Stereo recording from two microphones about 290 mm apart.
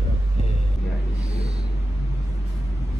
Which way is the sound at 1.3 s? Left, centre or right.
Right.